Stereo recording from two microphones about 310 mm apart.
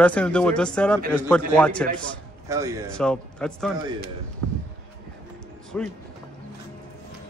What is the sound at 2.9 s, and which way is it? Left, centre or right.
Speech, centre.